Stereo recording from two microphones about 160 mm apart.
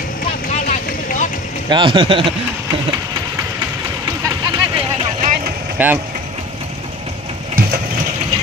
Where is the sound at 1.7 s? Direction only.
30° right (ahead or behind).